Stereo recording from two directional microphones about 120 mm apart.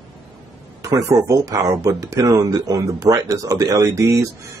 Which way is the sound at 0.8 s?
30° right (ahead or behind).